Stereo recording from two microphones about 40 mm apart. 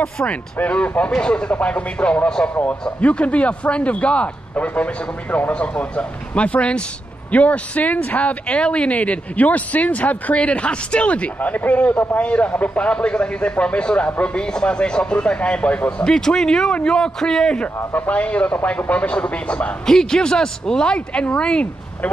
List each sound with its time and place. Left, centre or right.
0.7 s speech: left
2.2 s speech: centre
3.0 s speech: left
11.3 s a man's voice: left
12.2 s speech: left
12.8 s speech: left
16.0 s a man's voice: centre
17.9 s speech: left
19.9 s speech: centre